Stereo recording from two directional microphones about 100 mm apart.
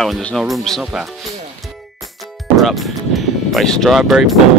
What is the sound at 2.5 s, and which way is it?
Music, centre (ahead or behind).